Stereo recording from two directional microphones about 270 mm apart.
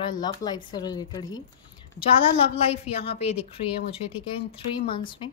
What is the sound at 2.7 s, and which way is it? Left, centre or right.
A woman's voice, left.